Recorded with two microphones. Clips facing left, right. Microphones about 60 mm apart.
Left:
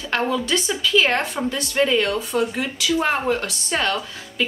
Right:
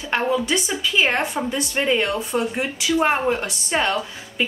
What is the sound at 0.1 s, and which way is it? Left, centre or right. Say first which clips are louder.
A woman's voice: right 1 dB; right.